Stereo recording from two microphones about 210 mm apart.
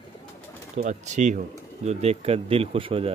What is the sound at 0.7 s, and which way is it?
Speech, 35° right (ahead or behind).